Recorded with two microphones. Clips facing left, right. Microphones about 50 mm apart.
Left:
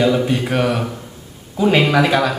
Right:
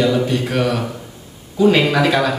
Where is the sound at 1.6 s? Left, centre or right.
Centre.